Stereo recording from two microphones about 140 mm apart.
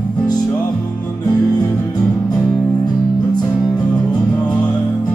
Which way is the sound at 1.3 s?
30° left (ahead or behind).